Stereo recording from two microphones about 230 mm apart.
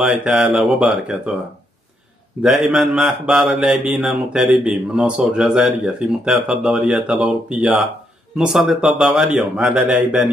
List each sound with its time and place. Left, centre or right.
0.0 s speech: centre
2.4 s speech: centre